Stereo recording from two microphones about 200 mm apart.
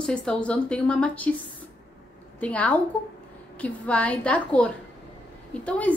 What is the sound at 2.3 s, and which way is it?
A woman's voice, 5° left (ahead or behind).